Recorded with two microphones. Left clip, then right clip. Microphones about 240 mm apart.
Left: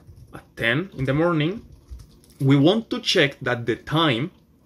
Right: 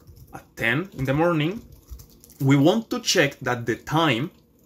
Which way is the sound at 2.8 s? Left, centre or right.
Right.